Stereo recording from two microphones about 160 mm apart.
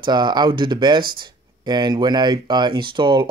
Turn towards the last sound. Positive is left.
turn(degrees=-30)  # may be behind; listen again after turning